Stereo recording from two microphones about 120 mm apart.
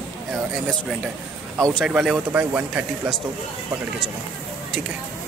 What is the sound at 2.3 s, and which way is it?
Speech, 15° right (ahead or behind).